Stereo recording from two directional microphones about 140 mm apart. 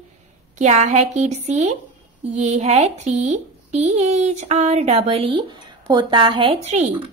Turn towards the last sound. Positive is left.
turn(degrees=-55)  # may be behind; listen again after turning